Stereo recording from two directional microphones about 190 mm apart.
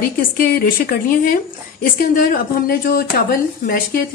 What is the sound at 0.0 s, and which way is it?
A woman's voice, 50° left (ahead or behind).